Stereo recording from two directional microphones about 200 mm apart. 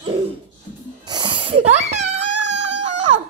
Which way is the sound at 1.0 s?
20° right (ahead or behind).